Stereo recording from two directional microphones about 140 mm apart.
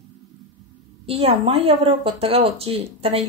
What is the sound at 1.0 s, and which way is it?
Speech, 45° right (ahead or behind).